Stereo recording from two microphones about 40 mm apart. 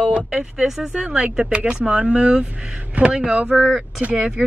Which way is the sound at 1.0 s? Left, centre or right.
Right.